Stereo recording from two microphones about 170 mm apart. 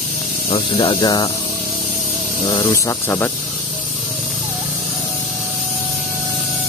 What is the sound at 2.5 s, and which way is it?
Speech, 20° left (ahead or behind).